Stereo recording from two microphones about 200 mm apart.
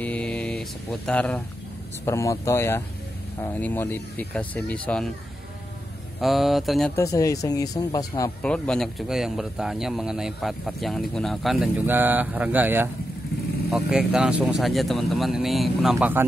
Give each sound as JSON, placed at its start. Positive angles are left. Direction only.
{"t": 0.0, "sound": "mantra", "side_deg": 5}
{"t": 2.0, "sound": "speech", "side_deg": 15}
{"t": 6.2, "sound": "speech", "side_deg": 0}
{"t": 7.0, "sound": "speech", "side_deg": 15}
{"t": 8.4, "sound": "speech", "side_deg": 5}